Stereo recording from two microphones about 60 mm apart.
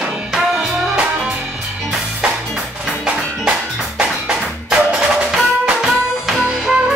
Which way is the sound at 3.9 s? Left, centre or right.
Centre.